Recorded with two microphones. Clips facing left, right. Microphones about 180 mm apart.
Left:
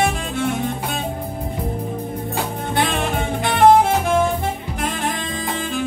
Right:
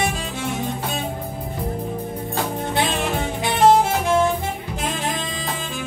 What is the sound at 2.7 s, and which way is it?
Music, 55° left (ahead or behind).